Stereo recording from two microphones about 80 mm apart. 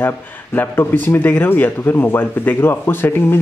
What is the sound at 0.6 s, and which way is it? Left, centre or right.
Speech, left.